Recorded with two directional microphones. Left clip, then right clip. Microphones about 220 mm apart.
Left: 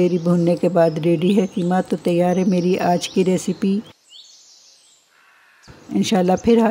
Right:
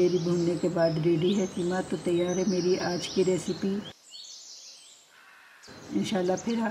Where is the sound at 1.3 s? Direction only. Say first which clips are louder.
Left 10 dB; 50° left (ahead or behind).